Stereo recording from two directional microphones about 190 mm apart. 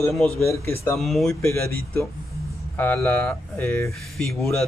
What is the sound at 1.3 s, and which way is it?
Speech, 15° left (ahead or behind).